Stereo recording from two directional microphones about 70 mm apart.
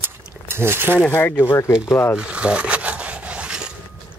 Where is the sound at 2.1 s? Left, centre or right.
Centre.